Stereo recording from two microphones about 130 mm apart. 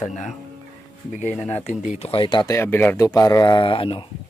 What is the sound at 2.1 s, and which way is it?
Speech, 35° left (ahead or behind).